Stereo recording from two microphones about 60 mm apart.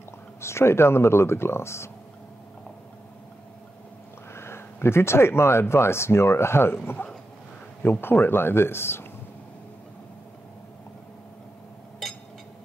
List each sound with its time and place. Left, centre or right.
0.4 s speech: left
4.3 s speech: left